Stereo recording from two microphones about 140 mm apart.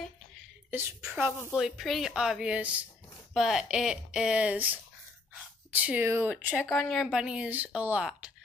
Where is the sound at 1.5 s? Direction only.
Centre (ahead or behind).